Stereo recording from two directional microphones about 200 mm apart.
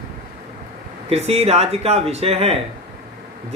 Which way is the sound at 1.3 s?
30° right (ahead or behind).